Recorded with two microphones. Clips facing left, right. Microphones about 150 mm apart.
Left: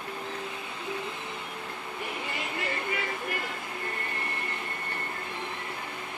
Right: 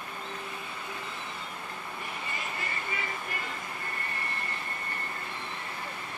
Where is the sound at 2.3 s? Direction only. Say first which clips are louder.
Left 4 dB; 70° left (ahead or behind).